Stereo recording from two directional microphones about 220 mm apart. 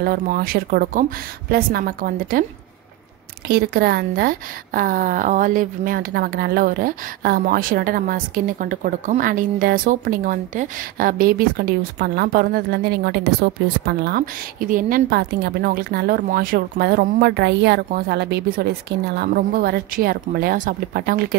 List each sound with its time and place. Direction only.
0.0 s a woman's voice: 40° right (ahead or behind)
3.4 s speech: 45° right (ahead or behind)